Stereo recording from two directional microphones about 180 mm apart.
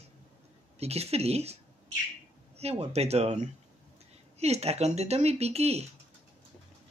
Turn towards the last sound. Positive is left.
turn(degrees=-35)  # may be behind; listen again after turning